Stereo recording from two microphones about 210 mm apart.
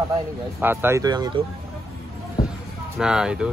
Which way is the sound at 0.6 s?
10° right (ahead or behind).